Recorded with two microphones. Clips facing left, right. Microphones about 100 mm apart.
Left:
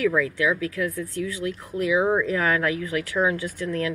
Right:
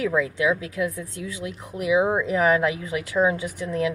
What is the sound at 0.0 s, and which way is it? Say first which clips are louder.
Speech: even; 20° right (ahead or behind).